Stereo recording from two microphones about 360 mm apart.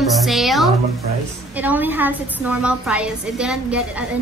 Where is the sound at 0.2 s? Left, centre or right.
Centre.